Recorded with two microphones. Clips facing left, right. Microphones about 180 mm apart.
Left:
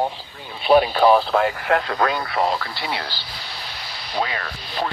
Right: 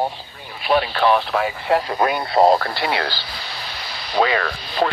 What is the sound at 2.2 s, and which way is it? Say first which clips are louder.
Speech: right 8 dB; 35° right (ahead or behind).